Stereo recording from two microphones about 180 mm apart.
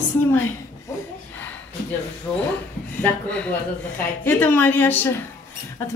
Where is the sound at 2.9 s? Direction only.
10° left (ahead or behind).